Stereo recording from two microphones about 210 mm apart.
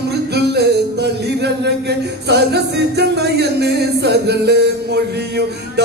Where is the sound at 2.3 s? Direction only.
50° right (ahead or behind).